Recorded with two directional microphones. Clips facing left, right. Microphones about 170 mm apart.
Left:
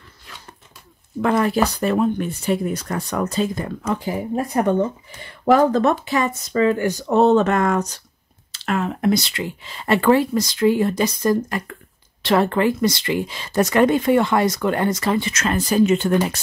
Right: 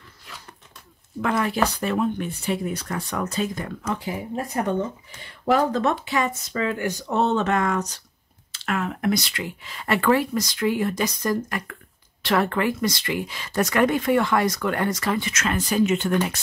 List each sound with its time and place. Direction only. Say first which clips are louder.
1.2 s speech: left 5 dB; 35° left (ahead or behind)
5.4 s speech: left 5 dB; 50° left (ahead or behind)
8.6 s speech: left 4 dB; 30° left (ahead or behind)